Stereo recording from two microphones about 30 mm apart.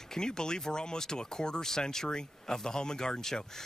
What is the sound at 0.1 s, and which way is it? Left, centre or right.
Speech, left.